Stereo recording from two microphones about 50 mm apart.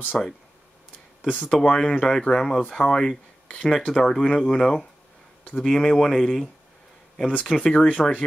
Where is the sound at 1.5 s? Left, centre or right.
Centre.